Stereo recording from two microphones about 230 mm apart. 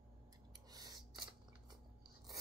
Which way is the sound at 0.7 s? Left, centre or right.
Centre.